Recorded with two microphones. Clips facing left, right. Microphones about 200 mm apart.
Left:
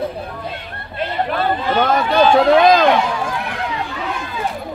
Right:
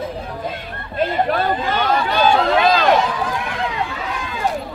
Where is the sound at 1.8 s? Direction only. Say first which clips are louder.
Left 5 dB; 45° left (ahead or behind).